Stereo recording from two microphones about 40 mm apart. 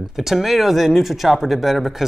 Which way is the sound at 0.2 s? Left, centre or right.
Centre.